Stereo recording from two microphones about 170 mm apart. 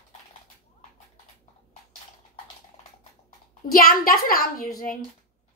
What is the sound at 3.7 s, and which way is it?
Speech, 60° left (ahead or behind).